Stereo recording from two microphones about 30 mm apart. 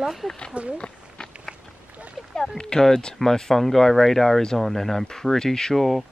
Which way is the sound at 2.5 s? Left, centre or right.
Centre.